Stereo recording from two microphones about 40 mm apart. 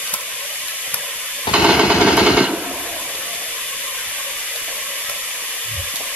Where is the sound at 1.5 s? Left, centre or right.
Right.